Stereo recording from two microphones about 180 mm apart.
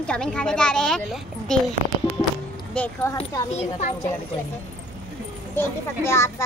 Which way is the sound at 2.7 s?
5° left (ahead or behind).